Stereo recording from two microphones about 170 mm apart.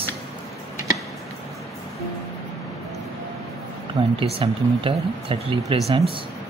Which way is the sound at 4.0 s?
30° right (ahead or behind).